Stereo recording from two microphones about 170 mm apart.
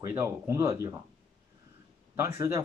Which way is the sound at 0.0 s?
15° right (ahead or behind).